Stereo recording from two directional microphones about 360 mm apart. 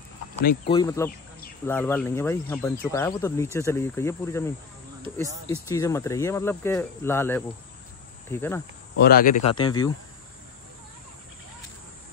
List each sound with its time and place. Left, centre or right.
0.7 s speech: centre
5.7 s speech: centre
8.9 s speech: left
9.5 s speech: centre